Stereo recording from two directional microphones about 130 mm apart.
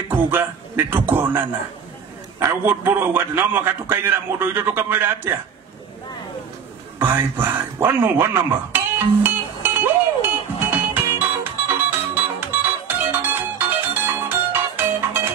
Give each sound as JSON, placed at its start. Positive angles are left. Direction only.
{"t": 0.1, "sound": "a man's voice", "side_deg": -15}
{"t": 2.4, "sound": "a man's voice", "side_deg": -15}
{"t": 7.0, "sound": "speech", "side_deg": -15}
{"t": 10.9, "sound": "music", "side_deg": -15}